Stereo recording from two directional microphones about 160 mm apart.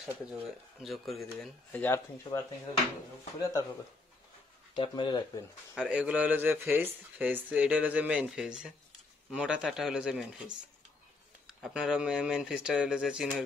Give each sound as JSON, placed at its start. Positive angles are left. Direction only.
{"t": 0.1, "sound": "speech", "side_deg": -5}
{"t": 4.7, "sound": "speech", "side_deg": 30}
{"t": 5.8, "sound": "speech", "side_deg": -10}